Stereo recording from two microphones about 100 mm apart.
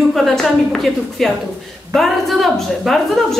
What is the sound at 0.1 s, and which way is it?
A woman's voice, centre (ahead or behind).